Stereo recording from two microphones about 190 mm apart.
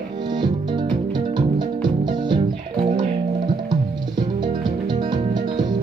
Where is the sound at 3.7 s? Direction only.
25° right (ahead or behind).